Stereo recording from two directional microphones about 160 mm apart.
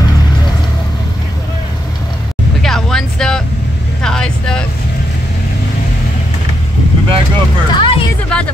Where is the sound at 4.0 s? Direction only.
5° left (ahead or behind).